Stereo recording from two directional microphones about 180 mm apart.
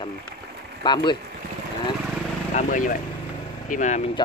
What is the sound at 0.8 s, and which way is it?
Speech, 25° left (ahead or behind).